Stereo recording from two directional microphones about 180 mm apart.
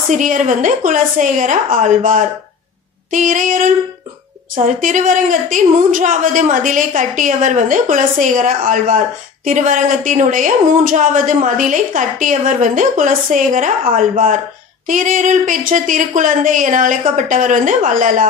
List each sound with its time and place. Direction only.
0.1 s a woman's voice: 45° right (ahead or behind)
4.7 s a woman's voice: 45° right (ahead or behind)